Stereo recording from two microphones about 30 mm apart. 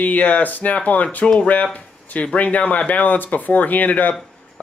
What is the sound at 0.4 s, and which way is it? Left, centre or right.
Speech, left.